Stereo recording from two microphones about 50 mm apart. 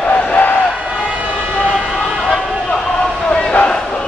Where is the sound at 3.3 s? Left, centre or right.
Left.